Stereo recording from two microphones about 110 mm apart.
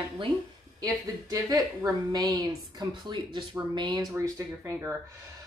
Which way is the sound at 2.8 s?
45° right (ahead or behind).